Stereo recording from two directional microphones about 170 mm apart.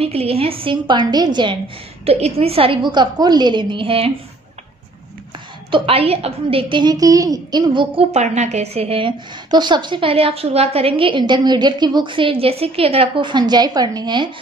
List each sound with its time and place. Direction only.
0.0 s a woman's voice: 35° right (ahead or behind)
5.7 s a woman's voice: 35° right (ahead or behind)